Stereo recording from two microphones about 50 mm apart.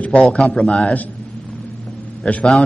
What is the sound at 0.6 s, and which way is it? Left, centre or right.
Speech, centre.